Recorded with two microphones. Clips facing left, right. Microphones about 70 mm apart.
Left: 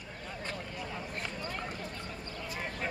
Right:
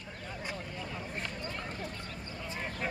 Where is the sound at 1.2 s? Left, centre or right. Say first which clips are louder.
Left 1 dB; centre.